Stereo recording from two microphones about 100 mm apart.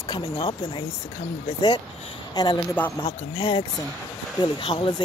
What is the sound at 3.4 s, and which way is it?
Speech, 60° left (ahead or behind).